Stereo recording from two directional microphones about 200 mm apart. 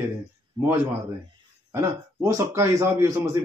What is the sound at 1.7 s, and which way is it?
Speech, 15° right (ahead or behind).